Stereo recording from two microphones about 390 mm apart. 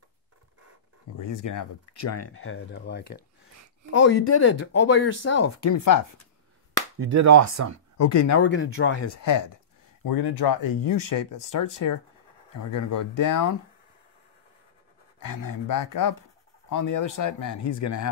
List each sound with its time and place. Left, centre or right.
1.1 s speech: left
4.0 s speech: left
4.6 s speech: left
5.6 s speech: left
7.0 s speech: right
8.0 s speech: left
8.5 s speech: left
10.0 s speech: left
15.2 s speech: left